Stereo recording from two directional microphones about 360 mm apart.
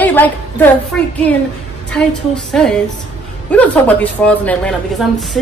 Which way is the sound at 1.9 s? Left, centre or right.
Centre.